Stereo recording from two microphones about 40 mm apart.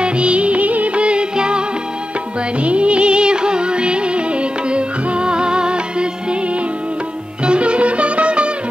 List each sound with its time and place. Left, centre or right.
0.0 s music of bollywood: right
2.6 s music: right
7.4 s music: right